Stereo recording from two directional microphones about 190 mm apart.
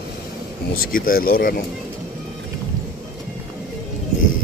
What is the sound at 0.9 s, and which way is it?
Speech, 50° left (ahead or behind).